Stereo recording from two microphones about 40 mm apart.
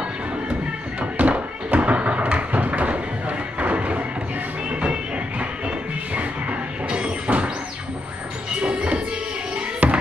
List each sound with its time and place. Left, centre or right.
1.1 s thump: right
4.6 s music: right
8.5 s music: right
9.8 s music: right